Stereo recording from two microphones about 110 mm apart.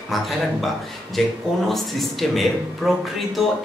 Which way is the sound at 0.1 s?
Centre (ahead or behind).